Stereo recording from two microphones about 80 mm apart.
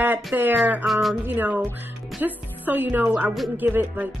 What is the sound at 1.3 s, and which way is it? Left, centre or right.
A woman's voice, right.